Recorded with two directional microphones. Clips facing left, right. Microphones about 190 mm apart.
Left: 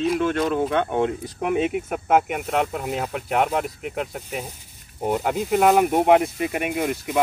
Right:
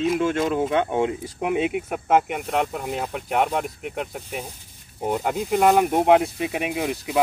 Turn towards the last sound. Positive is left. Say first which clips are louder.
# even
turn(degrees=0)  # may be behind; listen again after turning